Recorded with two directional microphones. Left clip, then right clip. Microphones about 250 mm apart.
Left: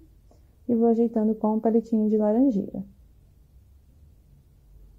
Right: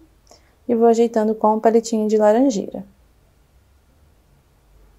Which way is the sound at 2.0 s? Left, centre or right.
Centre.